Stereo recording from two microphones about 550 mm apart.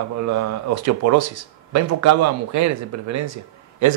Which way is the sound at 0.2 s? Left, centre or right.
Right.